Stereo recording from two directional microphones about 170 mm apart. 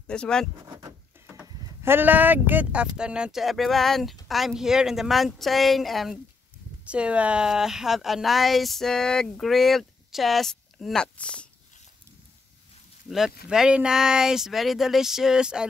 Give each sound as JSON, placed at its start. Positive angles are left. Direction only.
{"t": 0.0, "sound": "speech", "side_deg": 5}
{"t": 0.7, "sound": "a sound", "side_deg": -25}
{"t": 1.2, "sound": "speech", "side_deg": -10}
{"t": 13.5, "sound": "speech", "side_deg": -5}